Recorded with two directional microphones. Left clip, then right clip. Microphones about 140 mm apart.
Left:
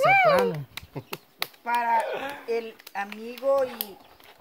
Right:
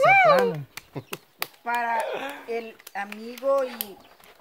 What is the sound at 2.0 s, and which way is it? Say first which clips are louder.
Speech: left 1 dB; 10° right (ahead or behind).